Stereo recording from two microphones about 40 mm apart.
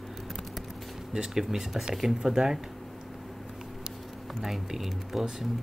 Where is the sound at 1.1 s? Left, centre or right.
Centre.